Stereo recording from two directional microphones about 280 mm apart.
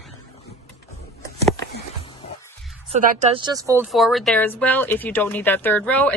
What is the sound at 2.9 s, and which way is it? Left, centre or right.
Speech, right.